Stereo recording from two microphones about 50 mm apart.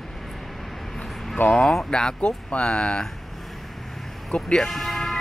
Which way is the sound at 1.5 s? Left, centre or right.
Centre.